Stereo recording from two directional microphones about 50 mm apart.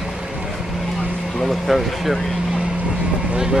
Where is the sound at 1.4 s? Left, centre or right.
Centre.